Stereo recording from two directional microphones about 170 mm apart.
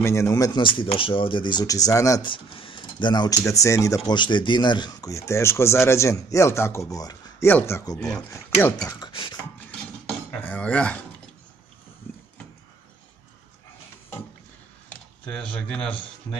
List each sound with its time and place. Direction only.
0.0 s speech: 15° left (ahead or behind)
8.8 s speech: 25° left (ahead or behind)
9.8 s dishes: 5° left (ahead or behind)
14.9 s speech: 5° left (ahead or behind)